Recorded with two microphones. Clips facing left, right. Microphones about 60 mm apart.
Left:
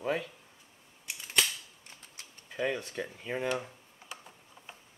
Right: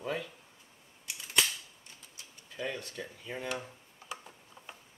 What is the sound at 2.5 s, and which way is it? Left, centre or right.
Speech, left.